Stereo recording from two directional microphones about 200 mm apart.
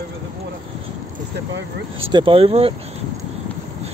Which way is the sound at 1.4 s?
70° right (ahead or behind).